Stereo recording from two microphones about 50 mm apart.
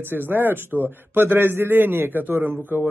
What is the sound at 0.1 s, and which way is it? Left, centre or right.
A man's voice, right.